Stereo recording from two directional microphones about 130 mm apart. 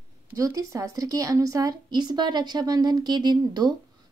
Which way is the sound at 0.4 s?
25° right (ahead or behind).